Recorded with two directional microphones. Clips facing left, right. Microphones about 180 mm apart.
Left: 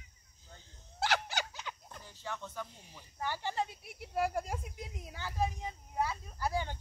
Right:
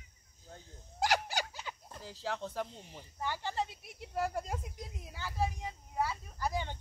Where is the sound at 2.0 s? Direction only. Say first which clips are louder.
Right 10 dB; 90° right.